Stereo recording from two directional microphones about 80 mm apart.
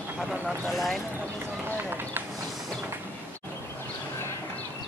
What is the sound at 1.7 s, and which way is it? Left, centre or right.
Run, right.